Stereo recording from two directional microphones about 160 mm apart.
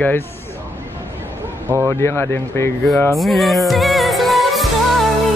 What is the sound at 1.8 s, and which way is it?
Speech, 15° left (ahead or behind).